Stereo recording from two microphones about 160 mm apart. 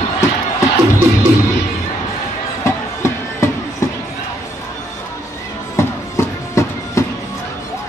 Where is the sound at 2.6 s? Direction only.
20° left (ahead or behind).